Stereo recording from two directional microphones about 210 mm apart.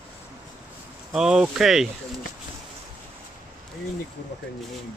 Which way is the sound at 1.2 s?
5° right (ahead or behind).